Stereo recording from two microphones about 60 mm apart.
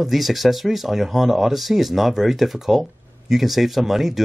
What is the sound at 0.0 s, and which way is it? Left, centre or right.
Speech, centre.